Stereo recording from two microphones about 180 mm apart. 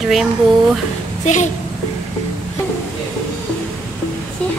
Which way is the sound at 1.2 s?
40° left (ahead or behind).